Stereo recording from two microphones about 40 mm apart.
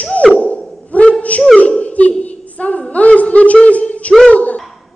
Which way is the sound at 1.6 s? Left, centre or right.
Left.